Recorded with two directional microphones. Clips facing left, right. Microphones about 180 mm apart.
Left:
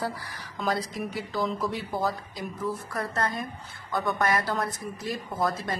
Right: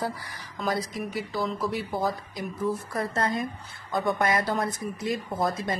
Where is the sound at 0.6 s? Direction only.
Centre (ahead or behind).